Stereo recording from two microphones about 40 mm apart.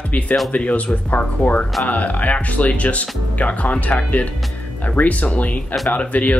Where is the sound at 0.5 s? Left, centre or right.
Left.